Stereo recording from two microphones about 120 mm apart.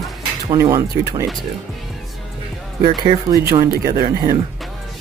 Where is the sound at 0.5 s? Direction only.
25° right (ahead or behind).